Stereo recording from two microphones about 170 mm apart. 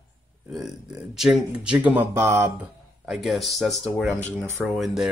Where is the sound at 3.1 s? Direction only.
Centre (ahead or behind).